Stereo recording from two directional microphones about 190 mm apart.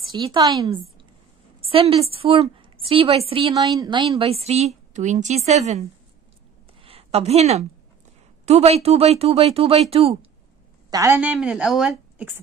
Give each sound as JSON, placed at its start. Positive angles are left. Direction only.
{"t": 0.2, "sound": "a woman's voice", "side_deg": -20}
{"t": 3.5, "sound": "a woman's voice", "side_deg": -20}
{"t": 6.8, "sound": "a sound", "side_deg": -30}
{"t": 8.5, "sound": "a woman's voice", "side_deg": -35}
{"t": 10.9, "sound": "a woman's voice", "side_deg": -15}